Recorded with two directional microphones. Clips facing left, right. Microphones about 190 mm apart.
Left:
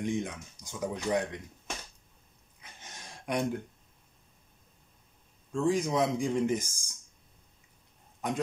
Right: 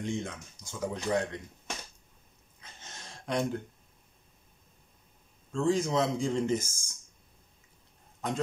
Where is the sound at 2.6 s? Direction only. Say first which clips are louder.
Even; 15° left (ahead or behind).